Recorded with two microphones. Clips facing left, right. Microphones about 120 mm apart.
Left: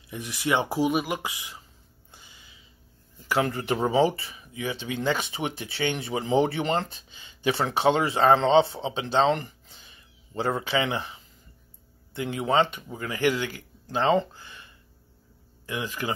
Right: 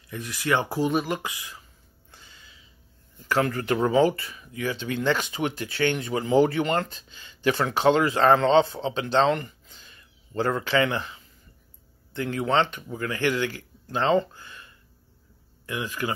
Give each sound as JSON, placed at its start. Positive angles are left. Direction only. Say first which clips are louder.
{"t": 0.1, "sound": "speech", "louder": "right 1 dB", "side_deg": 20}
{"t": 2.0, "sound": "a sound", "louder": "right 1 dB", "side_deg": 15}
{"t": 3.3, "sound": "speech", "louder": "right 1 dB", "side_deg": 20}
{"t": 10.3, "sound": "speech", "louder": "right 2 dB", "side_deg": 15}
{"t": 12.4, "sound": "speech", "louder": "left 1 dB", "side_deg": 15}
{"t": 15.6, "sound": "speech", "louder": "right 1 dB", "side_deg": 20}